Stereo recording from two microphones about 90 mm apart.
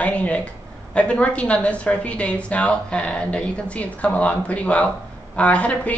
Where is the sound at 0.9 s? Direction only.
10° left (ahead or behind).